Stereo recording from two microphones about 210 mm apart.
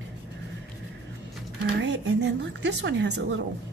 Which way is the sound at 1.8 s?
55° right (ahead or behind).